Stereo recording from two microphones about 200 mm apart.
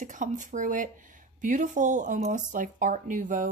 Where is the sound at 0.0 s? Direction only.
40° right (ahead or behind).